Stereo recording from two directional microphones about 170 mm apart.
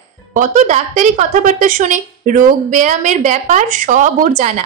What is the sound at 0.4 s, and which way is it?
A woman's voice, 50° right (ahead or behind).